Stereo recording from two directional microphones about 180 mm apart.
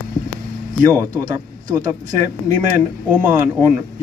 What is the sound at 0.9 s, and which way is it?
Speech, 20° right (ahead or behind).